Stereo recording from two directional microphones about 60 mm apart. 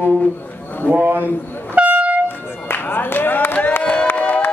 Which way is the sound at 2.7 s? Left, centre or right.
Left.